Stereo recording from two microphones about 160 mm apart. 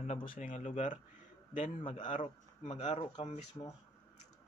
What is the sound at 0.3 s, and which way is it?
Speech, 50° left (ahead or behind).